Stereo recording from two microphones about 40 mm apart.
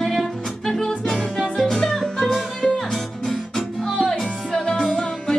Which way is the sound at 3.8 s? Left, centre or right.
Centre.